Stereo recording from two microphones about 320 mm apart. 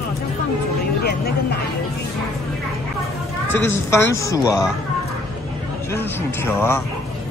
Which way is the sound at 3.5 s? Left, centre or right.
Centre.